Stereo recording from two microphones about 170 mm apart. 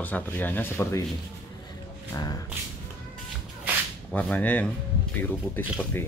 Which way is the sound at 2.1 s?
20° left (ahead or behind).